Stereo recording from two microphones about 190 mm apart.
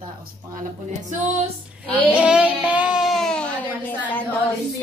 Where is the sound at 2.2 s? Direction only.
5° right (ahead or behind).